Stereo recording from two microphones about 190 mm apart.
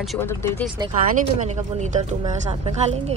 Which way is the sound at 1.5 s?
40° right (ahead or behind).